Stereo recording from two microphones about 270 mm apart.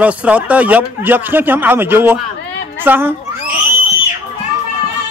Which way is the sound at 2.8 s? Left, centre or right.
Centre.